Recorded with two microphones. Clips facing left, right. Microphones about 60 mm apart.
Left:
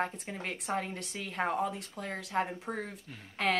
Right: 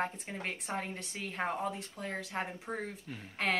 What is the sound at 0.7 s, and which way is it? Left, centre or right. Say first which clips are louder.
Speech: left 3 dB; centre.